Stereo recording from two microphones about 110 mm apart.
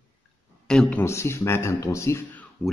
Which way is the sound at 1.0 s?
25° left (ahead or behind).